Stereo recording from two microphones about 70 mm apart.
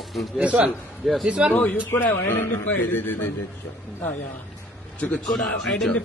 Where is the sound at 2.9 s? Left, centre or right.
Left.